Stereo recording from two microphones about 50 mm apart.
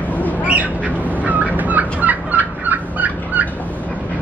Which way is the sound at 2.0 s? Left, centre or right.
Right.